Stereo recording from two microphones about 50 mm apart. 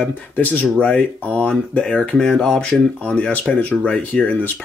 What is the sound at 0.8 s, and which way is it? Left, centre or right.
Speech, left.